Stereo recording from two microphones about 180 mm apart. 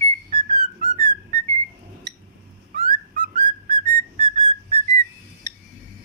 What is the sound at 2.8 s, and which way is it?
Whistling, 50° right (ahead or behind).